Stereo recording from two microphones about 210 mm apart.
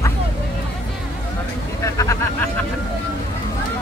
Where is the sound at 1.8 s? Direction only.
15° left (ahead or behind).